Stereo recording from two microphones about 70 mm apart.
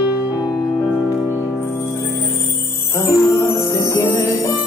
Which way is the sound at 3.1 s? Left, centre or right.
Left.